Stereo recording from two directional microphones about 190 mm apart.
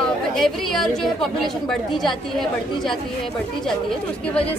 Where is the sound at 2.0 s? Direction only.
Centre (ahead or behind).